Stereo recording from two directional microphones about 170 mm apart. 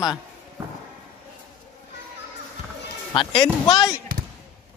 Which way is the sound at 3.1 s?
30° left (ahead or behind).